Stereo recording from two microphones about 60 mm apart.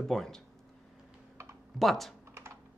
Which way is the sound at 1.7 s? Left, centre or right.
Centre.